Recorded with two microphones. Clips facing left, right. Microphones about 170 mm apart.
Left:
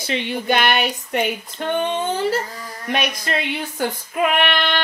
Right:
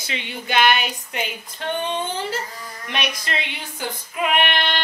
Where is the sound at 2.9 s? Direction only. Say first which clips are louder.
Left 5 dB; 50° left (ahead or behind).